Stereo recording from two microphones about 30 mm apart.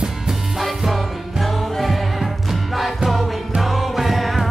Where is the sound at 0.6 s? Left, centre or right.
Centre.